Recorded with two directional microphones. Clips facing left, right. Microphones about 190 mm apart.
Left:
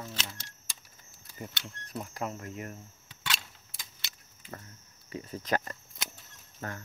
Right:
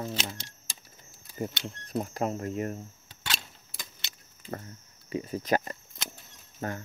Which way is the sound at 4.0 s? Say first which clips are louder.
Right 2 dB; 25° right (ahead or behind).